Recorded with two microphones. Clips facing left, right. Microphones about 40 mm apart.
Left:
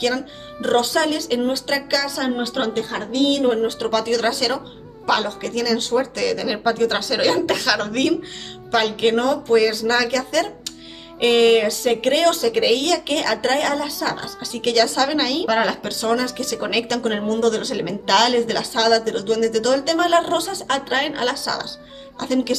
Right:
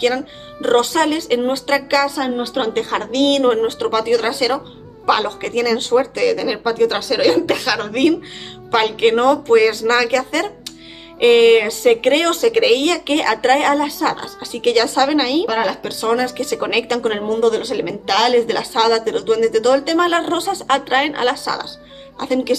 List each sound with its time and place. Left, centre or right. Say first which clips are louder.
0.0 s a woman's voice: right 4 dB; right
2.7 s a woman's voice: right 4 dB; right
3.8 s a woman's voice: right 3 dB; centre
5.2 s a woman's voice: right 4 dB; right
6.1 s speech: right 4 dB; centre
8.7 s a woman's voice: right 3 dB; right
15.4 s speech: right 1 dB; centre
16.0 s a woman's voice: right 4 dB; right